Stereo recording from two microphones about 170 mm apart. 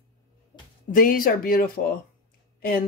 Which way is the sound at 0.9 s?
55° left (ahead or behind).